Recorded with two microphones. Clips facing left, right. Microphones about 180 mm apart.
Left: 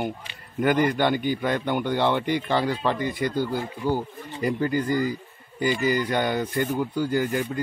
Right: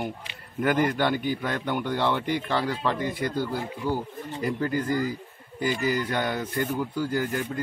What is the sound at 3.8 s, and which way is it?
Speech, 30° left (ahead or behind).